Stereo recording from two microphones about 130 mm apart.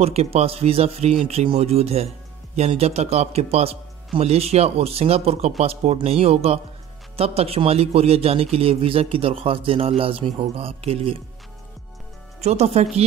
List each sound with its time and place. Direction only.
0.0 s a man's voice: 50° right (ahead or behind)
12.4 s speech: 55° right (ahead or behind)